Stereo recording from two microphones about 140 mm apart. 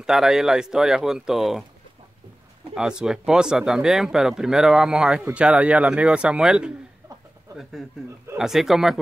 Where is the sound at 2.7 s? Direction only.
5° right (ahead or behind).